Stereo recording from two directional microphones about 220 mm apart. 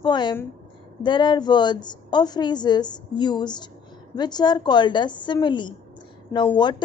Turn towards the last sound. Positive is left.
turn(degrees=10)  # may be behind; listen again after turning